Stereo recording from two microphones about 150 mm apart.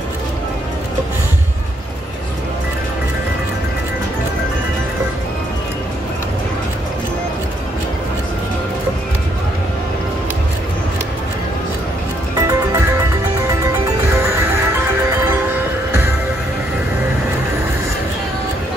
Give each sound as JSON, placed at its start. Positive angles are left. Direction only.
{"t": 12.4, "sound": "music", "side_deg": -20}
{"t": 14.2, "sound": "music", "side_deg": -15}